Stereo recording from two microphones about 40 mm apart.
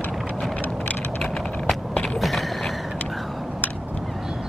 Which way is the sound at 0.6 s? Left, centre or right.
Left.